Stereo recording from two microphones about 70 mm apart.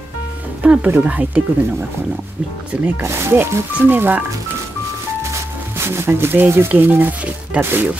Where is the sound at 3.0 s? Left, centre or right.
Right.